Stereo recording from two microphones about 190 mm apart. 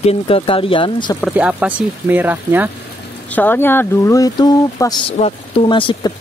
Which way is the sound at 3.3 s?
10° left (ahead or behind).